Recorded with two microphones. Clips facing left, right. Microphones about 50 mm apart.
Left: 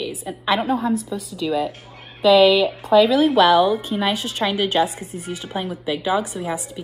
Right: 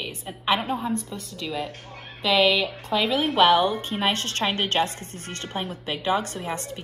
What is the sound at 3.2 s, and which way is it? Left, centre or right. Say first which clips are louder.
A woman's voice: left 4 dB; centre.